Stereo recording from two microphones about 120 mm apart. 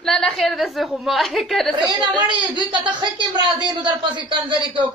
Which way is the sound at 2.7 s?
40° right (ahead or behind).